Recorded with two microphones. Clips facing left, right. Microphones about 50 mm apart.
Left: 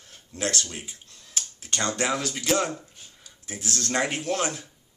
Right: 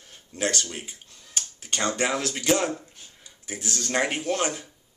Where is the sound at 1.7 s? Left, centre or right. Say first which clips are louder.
Right 1 dB; centre.